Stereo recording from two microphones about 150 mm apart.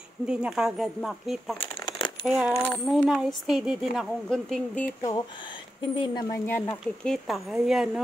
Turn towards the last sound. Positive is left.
turn(degrees=0)  # may be behind; listen again after turning